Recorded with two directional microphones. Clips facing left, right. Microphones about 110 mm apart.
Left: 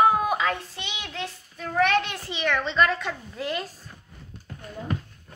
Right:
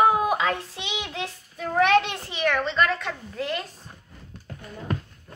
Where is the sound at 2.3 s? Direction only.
10° right (ahead or behind).